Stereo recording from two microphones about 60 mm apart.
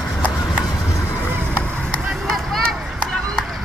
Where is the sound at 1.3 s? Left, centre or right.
Right.